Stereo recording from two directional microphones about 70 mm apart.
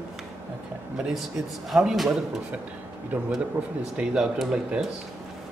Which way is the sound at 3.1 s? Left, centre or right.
Right.